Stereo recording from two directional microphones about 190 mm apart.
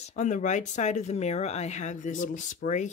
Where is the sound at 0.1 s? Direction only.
40° left (ahead or behind).